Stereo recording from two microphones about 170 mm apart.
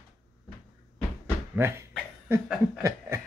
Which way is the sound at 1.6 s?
15° right (ahead or behind).